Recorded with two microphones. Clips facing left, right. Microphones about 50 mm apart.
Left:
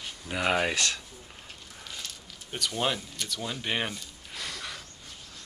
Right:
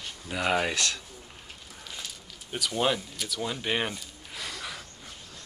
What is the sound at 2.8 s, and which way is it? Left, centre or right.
Speech, centre.